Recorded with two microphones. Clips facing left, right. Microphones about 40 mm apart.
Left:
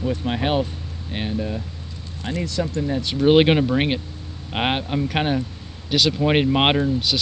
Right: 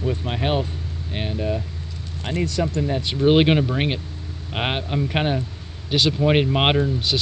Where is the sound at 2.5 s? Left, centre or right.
Right.